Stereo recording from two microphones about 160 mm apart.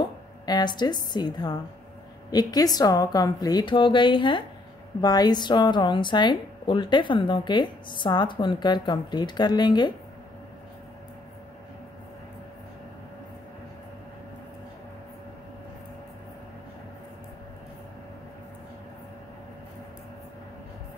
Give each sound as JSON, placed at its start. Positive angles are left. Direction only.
{"t": 0.5, "sound": "a woman's voice", "side_deg": 25}